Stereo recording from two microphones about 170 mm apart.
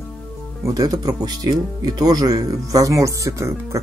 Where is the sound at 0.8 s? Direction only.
20° right (ahead or behind).